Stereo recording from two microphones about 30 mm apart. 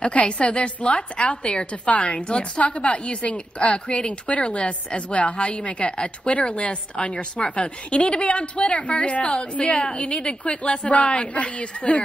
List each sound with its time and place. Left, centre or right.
0.0 s a woman's voice: left
1.9 s a woman's voice: left
2.1 s a woman's voice: left
2.6 s a woman's voice: left
3.1 s a woman's voice: left
10.9 s a woman's voice: left
11.1 s a woman's voice: left